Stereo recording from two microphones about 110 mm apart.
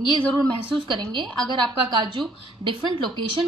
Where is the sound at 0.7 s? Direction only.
45° right (ahead or behind).